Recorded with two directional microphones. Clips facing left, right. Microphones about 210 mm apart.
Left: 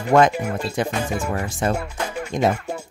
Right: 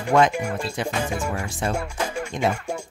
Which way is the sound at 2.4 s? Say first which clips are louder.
Left 4 dB; 40° left (ahead or behind).